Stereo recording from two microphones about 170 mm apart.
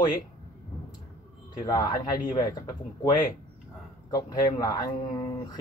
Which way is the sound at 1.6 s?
20° left (ahead or behind).